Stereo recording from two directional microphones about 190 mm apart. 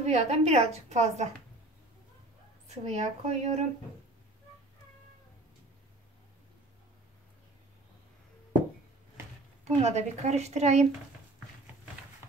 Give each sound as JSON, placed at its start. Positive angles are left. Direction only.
{"t": 0.0, "sound": "a woman's voice", "side_deg": -35}
{"t": 2.7, "sound": "a woman's voice", "side_deg": -35}
{"t": 9.8, "sound": "a woman's voice", "side_deg": -35}